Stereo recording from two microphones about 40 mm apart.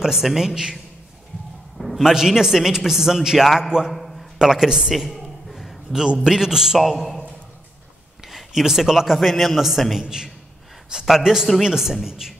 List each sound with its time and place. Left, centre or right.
0.0 s a man's voice: centre
2.0 s a man's voice: centre
3.9 s a sound: centre
4.4 s a man's voice: centre
4.9 s a sound: centre
6.2 s a man's voice: centre
6.8 s a man's voice: centre
8.3 s a man's voice: centre
9.9 s a man's voice: centre